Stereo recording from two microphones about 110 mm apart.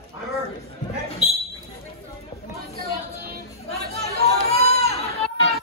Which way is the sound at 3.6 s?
75° left (ahead or behind).